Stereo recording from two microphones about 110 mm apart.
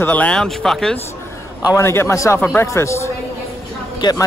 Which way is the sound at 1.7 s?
25° left (ahead or behind).